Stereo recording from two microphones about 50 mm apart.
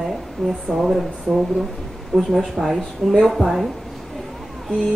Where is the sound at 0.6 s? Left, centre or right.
Centre.